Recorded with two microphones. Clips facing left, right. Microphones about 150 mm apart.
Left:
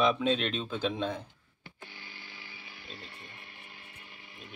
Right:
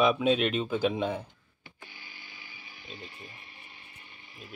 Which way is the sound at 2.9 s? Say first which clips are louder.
Right 4 dB; centre (ahead or behind).